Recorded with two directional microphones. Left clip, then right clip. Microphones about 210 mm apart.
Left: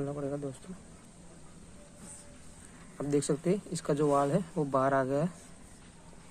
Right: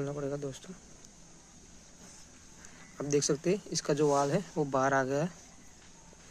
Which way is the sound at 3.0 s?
25° right (ahead or behind).